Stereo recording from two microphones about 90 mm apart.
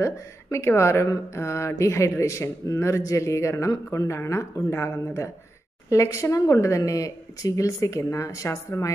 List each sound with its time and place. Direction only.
0.0 s speech: 30° left (ahead or behind)